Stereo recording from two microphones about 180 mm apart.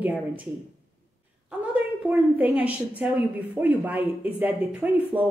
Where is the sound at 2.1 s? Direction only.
5° right (ahead or behind).